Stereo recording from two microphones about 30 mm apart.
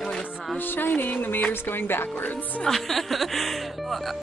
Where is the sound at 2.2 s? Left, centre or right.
Left.